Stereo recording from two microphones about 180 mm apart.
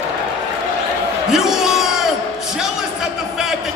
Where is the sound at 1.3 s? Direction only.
5° right (ahead or behind).